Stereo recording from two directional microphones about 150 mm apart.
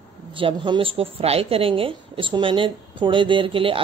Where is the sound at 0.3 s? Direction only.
35° right (ahead or behind).